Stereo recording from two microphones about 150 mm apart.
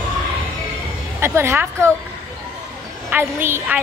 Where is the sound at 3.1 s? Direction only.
15° right (ahead or behind).